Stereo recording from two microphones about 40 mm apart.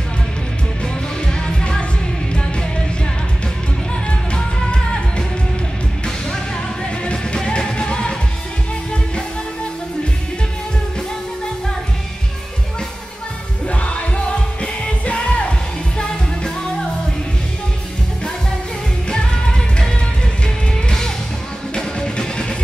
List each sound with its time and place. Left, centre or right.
1.2 s music: left
4.3 s music: left
7.3 s music: centre
13.7 s music: left
19.0 s music of asia: left
21.7 s music: left